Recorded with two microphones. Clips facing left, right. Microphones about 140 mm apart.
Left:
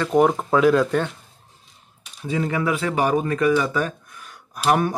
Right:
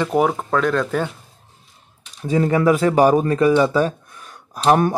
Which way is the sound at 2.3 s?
40° right (ahead or behind).